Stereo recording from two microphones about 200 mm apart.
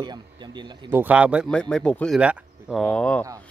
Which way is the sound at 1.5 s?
5° left (ahead or behind).